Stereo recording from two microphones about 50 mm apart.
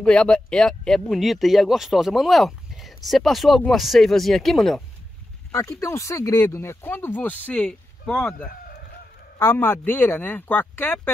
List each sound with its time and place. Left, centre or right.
0.0 s speech: centre
5.5 s speech: left
6.9 s speech: left
8.1 s speech: centre
9.4 s speech: left